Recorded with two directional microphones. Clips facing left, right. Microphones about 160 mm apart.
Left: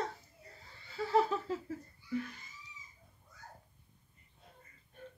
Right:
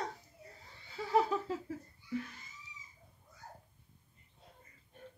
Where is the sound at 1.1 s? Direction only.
10° right (ahead or behind).